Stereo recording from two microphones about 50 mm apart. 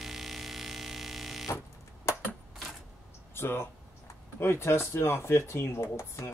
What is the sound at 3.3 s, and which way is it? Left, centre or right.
Speech, left.